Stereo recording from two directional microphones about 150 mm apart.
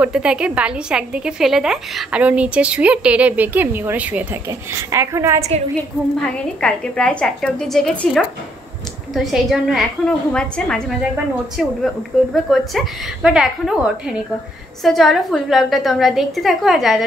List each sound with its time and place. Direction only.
0.0 s a woman's voice: 5° right (ahead or behind)
6.1 s a woman's voice: 5° left (ahead or behind)